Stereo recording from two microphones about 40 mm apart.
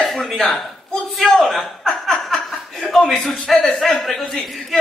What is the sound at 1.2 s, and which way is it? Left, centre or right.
Speech, centre.